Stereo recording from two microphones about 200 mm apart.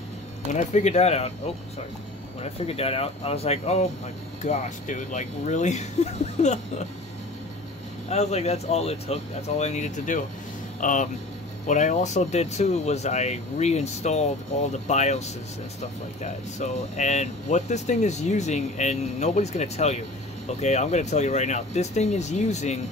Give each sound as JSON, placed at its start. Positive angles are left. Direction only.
{"t": 0.5, "sound": "speech", "side_deg": 35}
{"t": 2.4, "sound": "speech", "side_deg": 30}
{"t": 8.1, "sound": "speech", "side_deg": 35}